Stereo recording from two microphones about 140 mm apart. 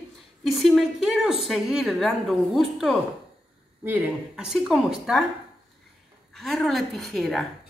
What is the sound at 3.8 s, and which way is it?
Speech, 15° right (ahead or behind).